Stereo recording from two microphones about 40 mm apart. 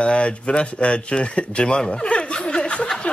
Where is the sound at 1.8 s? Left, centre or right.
Centre.